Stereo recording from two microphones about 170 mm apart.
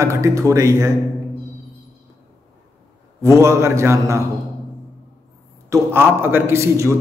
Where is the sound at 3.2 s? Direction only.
20° right (ahead or behind).